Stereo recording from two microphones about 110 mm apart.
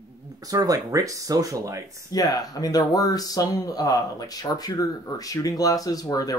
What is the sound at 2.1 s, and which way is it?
Speech, 35° left (ahead or behind).